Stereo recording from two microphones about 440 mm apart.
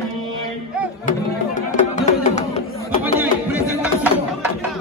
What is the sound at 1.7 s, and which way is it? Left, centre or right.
Music, centre.